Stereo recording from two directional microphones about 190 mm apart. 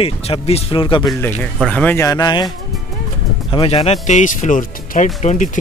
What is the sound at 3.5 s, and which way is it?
Speech, 30° left (ahead or behind).